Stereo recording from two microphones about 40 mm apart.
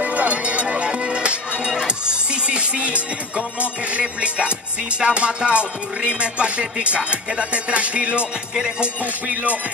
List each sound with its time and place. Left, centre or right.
0.0 s music: right